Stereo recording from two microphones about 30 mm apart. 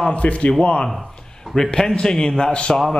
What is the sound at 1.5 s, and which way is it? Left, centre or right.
A man's voice, centre.